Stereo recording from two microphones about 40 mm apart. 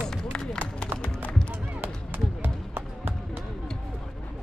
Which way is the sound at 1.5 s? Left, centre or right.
Right.